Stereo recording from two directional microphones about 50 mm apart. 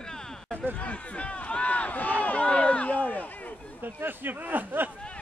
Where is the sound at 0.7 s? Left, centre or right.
Left.